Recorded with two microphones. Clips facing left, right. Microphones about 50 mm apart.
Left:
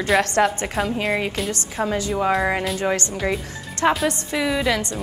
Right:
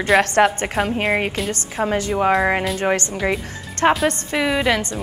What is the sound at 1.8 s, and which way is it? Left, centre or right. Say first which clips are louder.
Speech: right 2 dB; centre.